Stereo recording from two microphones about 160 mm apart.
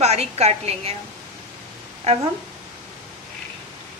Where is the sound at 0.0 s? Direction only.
40° right (ahead or behind).